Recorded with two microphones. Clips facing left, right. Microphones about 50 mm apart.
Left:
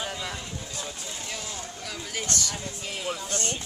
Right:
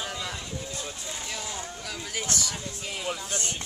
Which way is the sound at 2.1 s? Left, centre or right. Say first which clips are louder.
Left 1 dB; centre.